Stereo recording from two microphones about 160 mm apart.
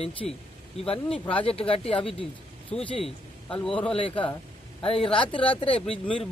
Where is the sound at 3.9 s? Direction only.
35° left (ahead or behind).